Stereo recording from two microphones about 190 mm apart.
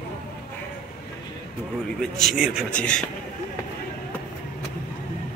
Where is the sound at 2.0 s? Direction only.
Centre (ahead or behind).